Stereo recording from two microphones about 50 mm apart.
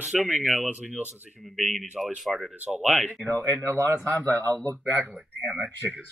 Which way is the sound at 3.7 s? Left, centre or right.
Right.